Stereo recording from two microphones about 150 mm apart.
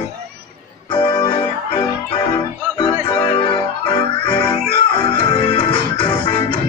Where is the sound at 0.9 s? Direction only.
35° left (ahead or behind).